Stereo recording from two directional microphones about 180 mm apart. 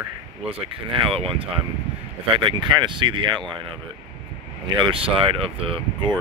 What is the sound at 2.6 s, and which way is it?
Speech, 25° right (ahead or behind).